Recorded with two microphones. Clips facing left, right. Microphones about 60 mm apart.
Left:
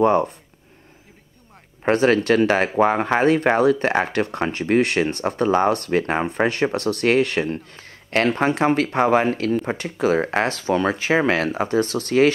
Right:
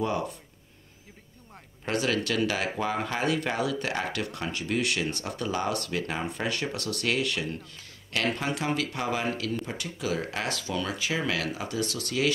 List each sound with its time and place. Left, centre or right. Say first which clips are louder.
0.0 s speech: left 12 dB; left
1.9 s speech: left 11 dB; left